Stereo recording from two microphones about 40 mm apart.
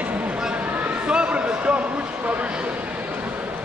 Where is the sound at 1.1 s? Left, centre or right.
Right.